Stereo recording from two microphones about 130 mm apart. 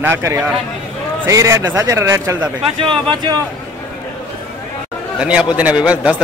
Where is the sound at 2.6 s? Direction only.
45° right (ahead or behind).